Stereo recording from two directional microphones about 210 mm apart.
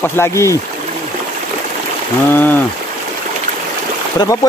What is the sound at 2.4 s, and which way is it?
Speech, 10° left (ahead or behind).